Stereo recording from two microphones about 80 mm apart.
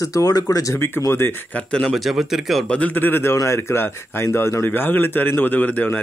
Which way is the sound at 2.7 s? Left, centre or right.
Centre.